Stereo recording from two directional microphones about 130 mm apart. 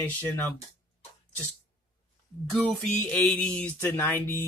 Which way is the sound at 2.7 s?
5° left (ahead or behind).